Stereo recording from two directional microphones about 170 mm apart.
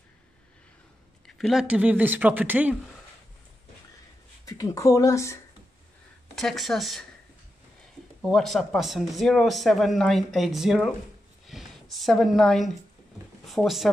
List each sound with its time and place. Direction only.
1.2 s speech: centre (ahead or behind)
4.5 s speech: 20° left (ahead or behind)
6.3 s speech: centre (ahead or behind)
8.2 s speech: centre (ahead or behind)